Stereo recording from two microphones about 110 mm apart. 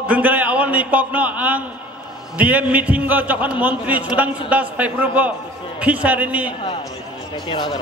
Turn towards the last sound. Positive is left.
turn(degrees=45)  # may be behind; listen again after turning